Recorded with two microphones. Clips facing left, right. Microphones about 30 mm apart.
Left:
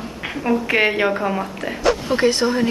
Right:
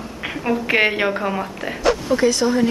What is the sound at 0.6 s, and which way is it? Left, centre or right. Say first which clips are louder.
A woman's voice: right 1 dB; centre.